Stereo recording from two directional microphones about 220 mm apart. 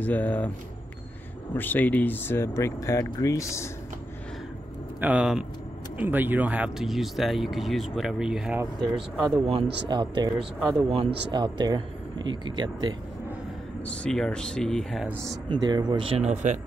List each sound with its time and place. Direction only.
0.0 s speech: 10° left (ahead or behind)
1.5 s speech: 10° left (ahead or behind)
5.0 s speech: 5° right (ahead or behind)
9.5 s speech: 25° right (ahead or behind)
14.0 s speech: 5° left (ahead or behind)
15.5 s speech: 20° right (ahead or behind)